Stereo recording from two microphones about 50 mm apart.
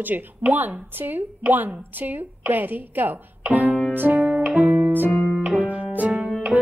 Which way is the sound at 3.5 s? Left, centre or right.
Right.